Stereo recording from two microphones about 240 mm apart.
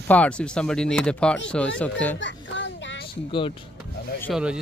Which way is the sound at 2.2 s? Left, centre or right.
Left.